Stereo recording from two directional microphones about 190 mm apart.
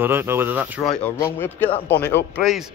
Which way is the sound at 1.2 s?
10° left (ahead or behind).